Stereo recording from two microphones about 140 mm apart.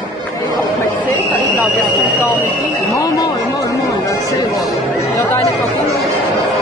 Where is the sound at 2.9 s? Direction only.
25° left (ahead or behind).